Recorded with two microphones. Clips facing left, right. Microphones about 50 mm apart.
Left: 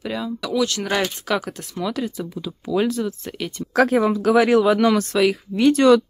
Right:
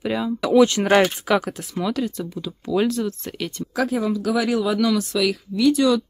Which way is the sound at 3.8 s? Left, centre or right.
Left.